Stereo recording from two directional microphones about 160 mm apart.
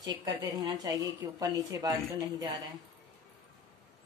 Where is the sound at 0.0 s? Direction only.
25° right (ahead or behind).